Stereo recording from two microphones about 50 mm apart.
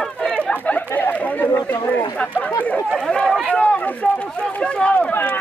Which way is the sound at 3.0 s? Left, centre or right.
Centre.